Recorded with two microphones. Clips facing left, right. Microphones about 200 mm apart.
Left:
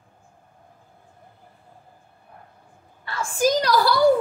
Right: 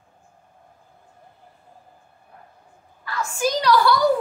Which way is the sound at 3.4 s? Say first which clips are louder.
Even; 40° left (ahead or behind).